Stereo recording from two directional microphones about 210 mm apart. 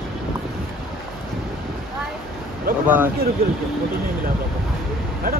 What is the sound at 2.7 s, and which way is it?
Speech, 40° right (ahead or behind).